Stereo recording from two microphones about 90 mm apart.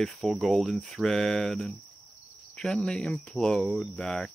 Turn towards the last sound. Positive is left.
turn(degrees=5)  # may be behind; listen again after turning